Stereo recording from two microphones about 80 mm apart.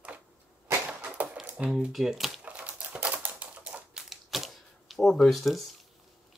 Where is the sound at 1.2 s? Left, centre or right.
Centre.